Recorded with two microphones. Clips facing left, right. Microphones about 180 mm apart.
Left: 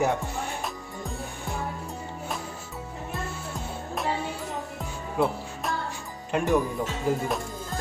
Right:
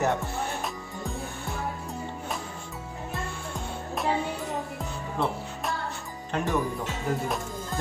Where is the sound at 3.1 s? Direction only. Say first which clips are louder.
Even; centre (ahead or behind).